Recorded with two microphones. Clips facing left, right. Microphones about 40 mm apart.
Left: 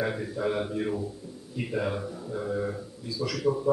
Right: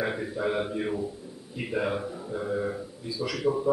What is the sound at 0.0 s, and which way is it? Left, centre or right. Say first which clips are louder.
A man's voice: even; centre.